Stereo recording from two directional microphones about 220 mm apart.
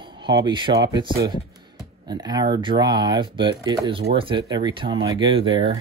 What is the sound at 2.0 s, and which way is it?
Speech, 20° right (ahead or behind).